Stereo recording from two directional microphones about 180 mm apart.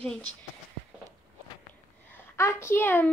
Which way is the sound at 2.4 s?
15° left (ahead or behind).